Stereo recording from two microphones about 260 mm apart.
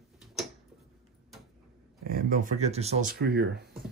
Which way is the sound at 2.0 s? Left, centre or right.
Right.